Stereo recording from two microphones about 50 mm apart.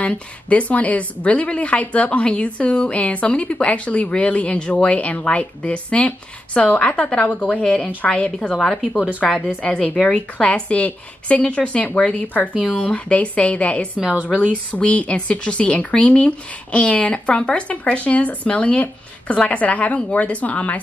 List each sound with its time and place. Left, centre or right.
0.0 s a woman's voice: left
9.2 s a woman's voice: centre
10.0 s a woman's voice: left
13.9 s a woman's voice: right
14.7 s a woman's voice: left